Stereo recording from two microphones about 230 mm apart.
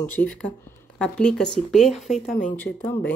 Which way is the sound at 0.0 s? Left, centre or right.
Centre.